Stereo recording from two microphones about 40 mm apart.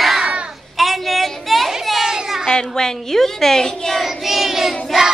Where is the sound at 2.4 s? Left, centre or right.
Centre.